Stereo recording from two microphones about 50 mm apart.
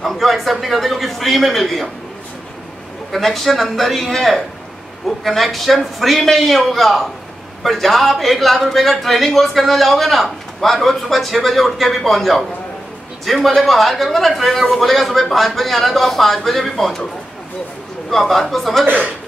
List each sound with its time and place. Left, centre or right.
0.0 s speech: centre
3.1 s speech: centre
18.1 s speech: centre
18.9 s a man's voice: right